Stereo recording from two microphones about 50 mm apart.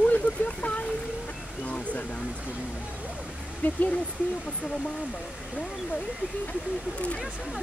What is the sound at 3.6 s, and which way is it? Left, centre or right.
Speech, left.